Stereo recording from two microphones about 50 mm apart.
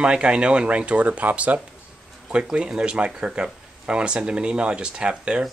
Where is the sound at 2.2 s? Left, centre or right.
Centre.